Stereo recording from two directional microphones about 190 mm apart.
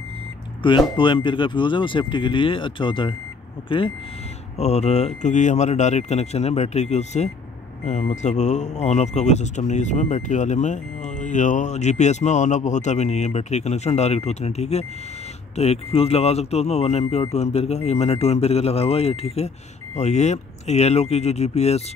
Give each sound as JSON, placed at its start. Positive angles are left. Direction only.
{"t": 0.6, "sound": "speech", "side_deg": 25}